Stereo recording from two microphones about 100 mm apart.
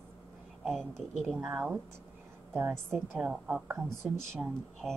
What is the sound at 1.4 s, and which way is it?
A woman's voice, 15° right (ahead or behind).